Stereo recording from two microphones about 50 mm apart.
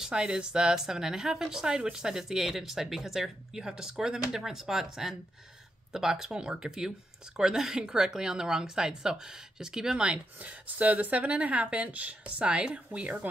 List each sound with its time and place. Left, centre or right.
0.0 s speech: centre